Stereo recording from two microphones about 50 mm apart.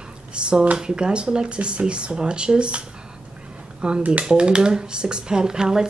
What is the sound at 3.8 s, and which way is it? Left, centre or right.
Speech, right.